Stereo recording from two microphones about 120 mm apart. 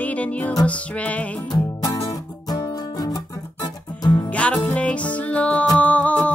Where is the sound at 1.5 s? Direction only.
25° left (ahead or behind).